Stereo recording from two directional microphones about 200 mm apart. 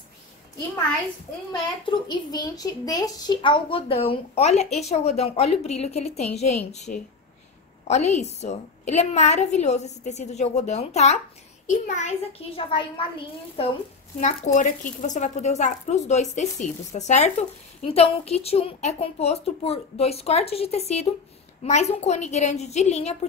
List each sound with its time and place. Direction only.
1.5 s a child's voice: 20° left (ahead or behind)
14.2 s a woman's voice: 40° left (ahead or behind)